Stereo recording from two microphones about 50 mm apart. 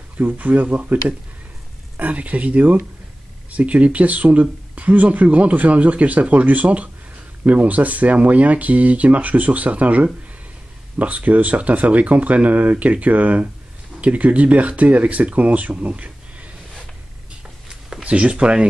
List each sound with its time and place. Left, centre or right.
0.2 s speech: right
17.6 s a sound: centre
18.0 s speech: right